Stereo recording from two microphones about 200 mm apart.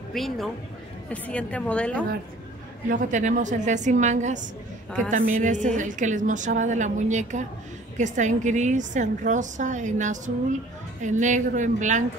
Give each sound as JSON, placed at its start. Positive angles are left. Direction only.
{"t": 0.1, "sound": "a woman's voice", "side_deg": 0}
{"t": 2.9, "sound": "a woman's voice", "side_deg": -40}